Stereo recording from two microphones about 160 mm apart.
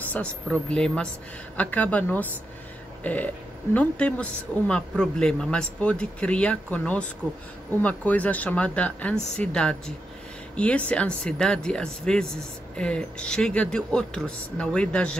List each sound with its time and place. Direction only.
0.1 s speech: 10° left (ahead or behind)